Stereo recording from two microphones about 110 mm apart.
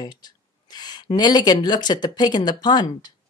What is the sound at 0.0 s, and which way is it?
Speech, 40° left (ahead or behind).